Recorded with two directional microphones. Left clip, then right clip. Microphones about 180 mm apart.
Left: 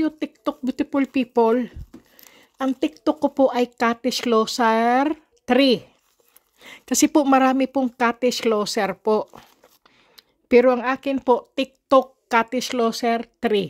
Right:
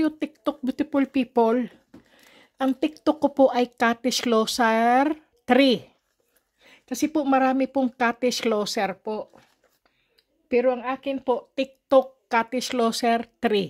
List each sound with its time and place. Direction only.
0.0 s speech: 5° left (ahead or behind)
6.6 s a woman's voice: 30° left (ahead or behind); by 8.9 s 10° left (ahead or behind)
9.0 s a woman's voice: 35° left (ahead or behind); by 13.7 s 5° left (ahead or behind)